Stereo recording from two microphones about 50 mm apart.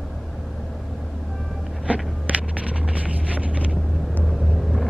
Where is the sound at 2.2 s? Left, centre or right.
Right.